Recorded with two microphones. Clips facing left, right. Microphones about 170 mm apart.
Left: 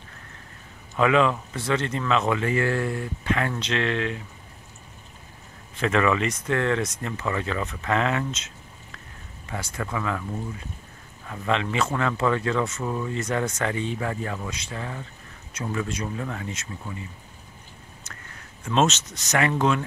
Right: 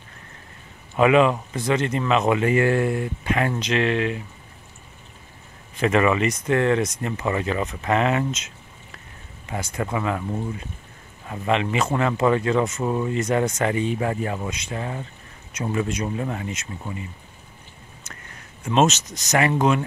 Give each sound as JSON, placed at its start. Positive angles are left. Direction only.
{"t": 0.9, "sound": "speech", "side_deg": -15}
{"t": 5.8, "sound": "speech", "side_deg": -10}
{"t": 9.5, "sound": "speech", "side_deg": -20}
{"t": 11.2, "sound": "speech", "side_deg": -10}
{"t": 18.1, "sound": "a sound", "side_deg": -15}
{"t": 18.7, "sound": "speech", "side_deg": -15}
{"t": 18.9, "sound": "speech", "side_deg": -40}
{"t": 19.3, "sound": "speech", "side_deg": -10}